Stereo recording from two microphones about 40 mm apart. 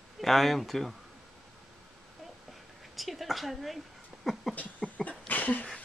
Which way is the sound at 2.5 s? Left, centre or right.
Centre.